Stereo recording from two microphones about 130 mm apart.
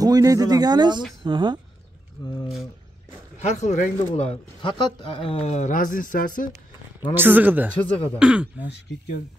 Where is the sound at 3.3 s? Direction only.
60° left (ahead or behind).